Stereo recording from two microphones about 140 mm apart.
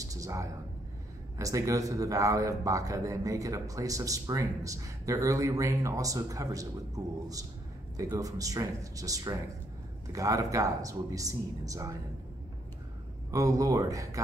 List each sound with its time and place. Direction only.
0.0 s a sound: 25° right (ahead or behind)
1.4 s speech: 25° right (ahead or behind)
8.0 s speech: 25° right (ahead or behind)
13.3 s speech: 25° right (ahead or behind)